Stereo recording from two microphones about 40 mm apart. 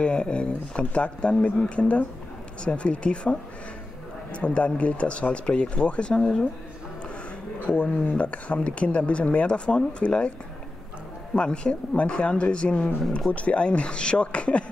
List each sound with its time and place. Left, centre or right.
0.0 s speech: left
7.6 s speech: left
11.3 s speech: left